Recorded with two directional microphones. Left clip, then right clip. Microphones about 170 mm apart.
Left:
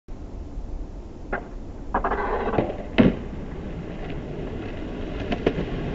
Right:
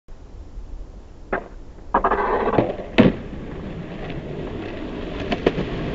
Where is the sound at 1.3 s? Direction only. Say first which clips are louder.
Right 4 dB; 30° right (ahead or behind).